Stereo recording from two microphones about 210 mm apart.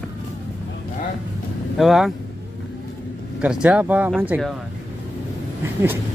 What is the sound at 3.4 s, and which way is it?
Speech, 5° right (ahead or behind).